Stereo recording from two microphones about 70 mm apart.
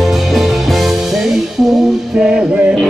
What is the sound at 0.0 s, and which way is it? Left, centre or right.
Music, centre.